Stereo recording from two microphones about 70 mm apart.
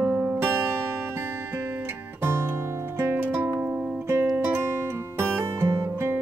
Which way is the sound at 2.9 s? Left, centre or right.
Right.